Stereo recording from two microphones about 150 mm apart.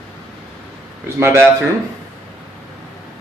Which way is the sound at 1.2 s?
15° right (ahead or behind).